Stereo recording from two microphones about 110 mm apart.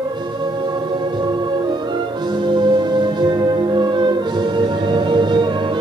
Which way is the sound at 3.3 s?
45° right (ahead or behind).